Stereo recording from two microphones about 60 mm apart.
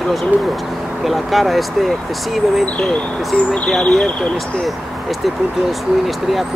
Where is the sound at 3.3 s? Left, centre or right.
Centre.